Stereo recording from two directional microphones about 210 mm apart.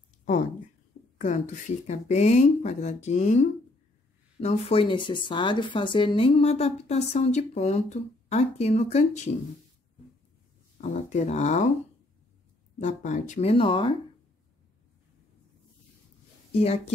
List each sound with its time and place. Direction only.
1.2 s speech: 35° left (ahead or behind)
10.8 s speech: 35° left (ahead or behind)
12.7 s speech: 35° left (ahead or behind)
16.5 s speech: 30° left (ahead or behind)